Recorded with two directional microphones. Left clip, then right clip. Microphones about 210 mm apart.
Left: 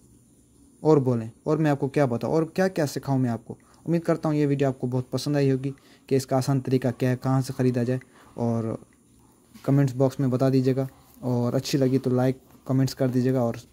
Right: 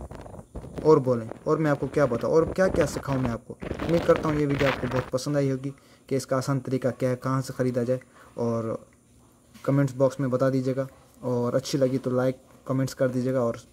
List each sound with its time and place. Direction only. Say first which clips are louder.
0.8 s speech: right 1 dB; 20° left (ahead or behind)